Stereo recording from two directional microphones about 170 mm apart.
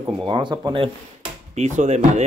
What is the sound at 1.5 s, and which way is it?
Speech, 45° right (ahead or behind).